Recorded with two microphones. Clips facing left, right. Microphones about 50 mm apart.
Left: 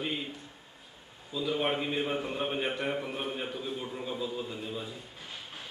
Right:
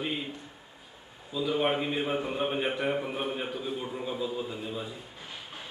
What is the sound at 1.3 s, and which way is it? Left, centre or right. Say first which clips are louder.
A man's voice: right 3 dB; centre.